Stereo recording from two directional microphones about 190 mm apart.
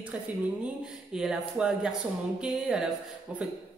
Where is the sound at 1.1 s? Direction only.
5° right (ahead or behind).